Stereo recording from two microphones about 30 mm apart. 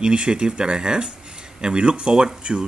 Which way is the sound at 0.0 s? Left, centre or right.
Right.